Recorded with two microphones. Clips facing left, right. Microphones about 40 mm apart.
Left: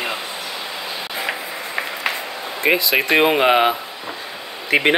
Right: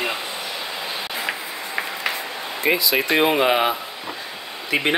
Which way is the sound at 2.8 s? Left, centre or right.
Left.